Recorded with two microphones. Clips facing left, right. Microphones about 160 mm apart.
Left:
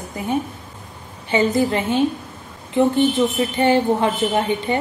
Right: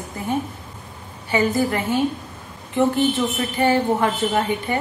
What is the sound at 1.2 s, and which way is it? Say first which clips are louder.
Speech: left 2 dB; 20° left (ahead or behind).